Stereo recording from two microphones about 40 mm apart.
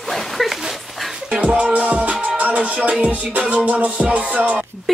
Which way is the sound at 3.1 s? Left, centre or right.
Right.